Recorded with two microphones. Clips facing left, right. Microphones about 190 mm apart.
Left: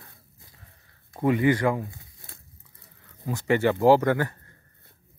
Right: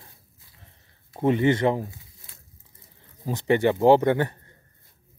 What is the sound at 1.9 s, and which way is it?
Crumpling, 55° left (ahead or behind).